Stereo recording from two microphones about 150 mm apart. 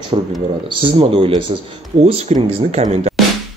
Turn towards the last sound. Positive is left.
turn(degrees=-45)  # may be behind; listen again after turning